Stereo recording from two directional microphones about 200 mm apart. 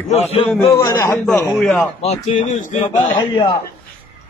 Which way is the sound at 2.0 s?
35° left (ahead or behind).